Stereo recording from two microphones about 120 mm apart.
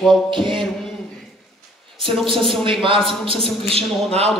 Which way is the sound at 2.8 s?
45° right (ahead or behind).